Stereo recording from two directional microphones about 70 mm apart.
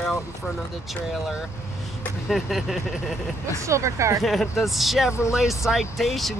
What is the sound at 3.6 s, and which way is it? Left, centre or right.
Speech, right.